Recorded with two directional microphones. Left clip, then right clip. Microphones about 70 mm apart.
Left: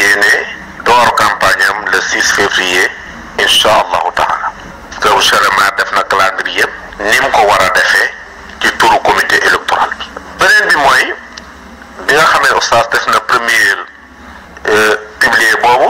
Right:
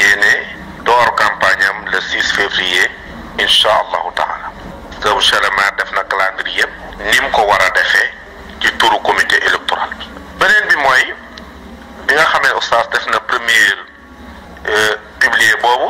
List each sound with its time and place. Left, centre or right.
0.0 s radio: left
1.8 s radio: left
3.3 s a sound: left
4.9 s radio: left
6.3 s radio: left
7.8 s a sound: left
8.6 s radio: left
12.1 s fowl: left
13.1 s a sound: left
15.1 s radio: left